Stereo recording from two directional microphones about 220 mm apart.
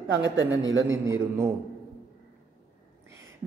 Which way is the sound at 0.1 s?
55° right (ahead or behind).